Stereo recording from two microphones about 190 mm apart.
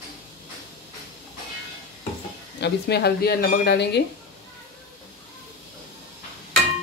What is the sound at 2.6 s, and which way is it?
Speech, 60° left (ahead or behind).